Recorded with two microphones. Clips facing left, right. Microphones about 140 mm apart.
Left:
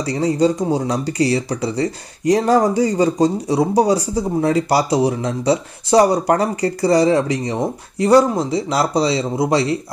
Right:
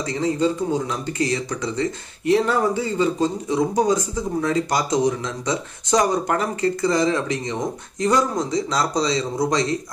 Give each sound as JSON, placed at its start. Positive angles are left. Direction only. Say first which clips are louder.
{"t": 0.0, "sound": "speech", "louder": "left 4 dB", "side_deg": 35}